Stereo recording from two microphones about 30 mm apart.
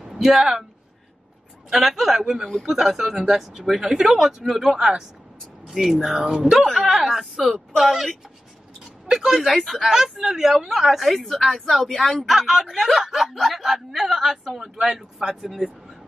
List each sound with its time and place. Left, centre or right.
0.0 s speech: centre
1.7 s speech: centre
4.7 s speech: right
5.7 s speech: centre
6.0 s speech: centre
6.9 s a woman's voice: centre
9.0 s a sound: centre
9.5 s speech: centre
9.8 s speech: centre
11.4 s speech: centre
12.2 s speech: centre
14.6 s speech: centre